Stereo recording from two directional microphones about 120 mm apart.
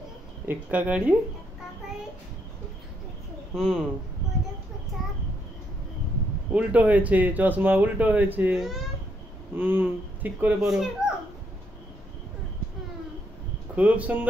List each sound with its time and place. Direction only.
0.5 s speech: 10° right (ahead or behind)
3.5 s speech: 5° right (ahead or behind)
6.5 s speech: 10° right (ahead or behind)
9.6 s speech: 15° right (ahead or behind)
13.7 s speech: 15° right (ahead or behind)